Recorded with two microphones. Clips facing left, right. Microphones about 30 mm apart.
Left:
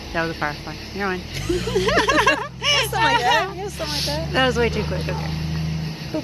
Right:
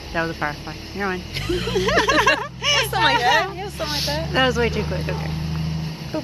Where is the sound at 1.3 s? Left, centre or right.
Right.